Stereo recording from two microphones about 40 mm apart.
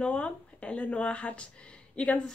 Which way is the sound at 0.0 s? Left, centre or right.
Left.